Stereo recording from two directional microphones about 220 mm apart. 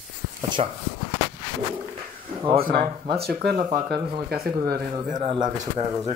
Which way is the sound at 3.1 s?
45° right (ahead or behind).